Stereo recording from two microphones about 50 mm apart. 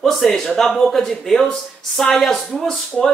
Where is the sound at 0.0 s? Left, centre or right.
Centre.